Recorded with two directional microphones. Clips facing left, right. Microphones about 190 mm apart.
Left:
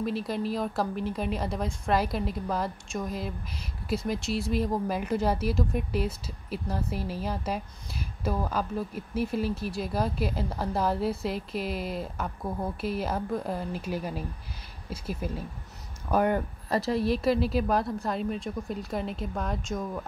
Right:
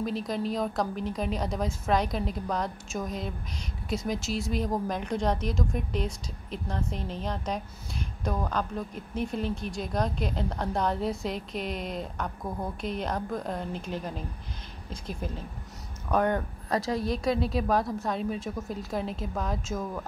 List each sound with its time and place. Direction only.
0.0 s speech: 5° left (ahead or behind)